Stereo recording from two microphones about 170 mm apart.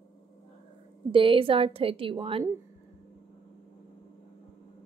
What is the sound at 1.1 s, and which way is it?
A woman's voice, 30° right (ahead or behind).